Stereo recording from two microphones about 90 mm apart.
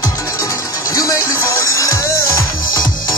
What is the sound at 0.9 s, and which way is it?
Music, 40° left (ahead or behind).